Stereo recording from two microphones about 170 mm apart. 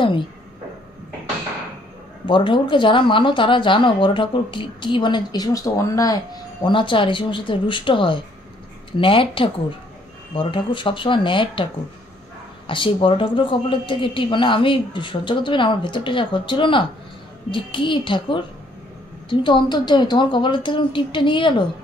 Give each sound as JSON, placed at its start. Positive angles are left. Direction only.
{"t": 2.2, "sound": "a woman's voice", "side_deg": 30}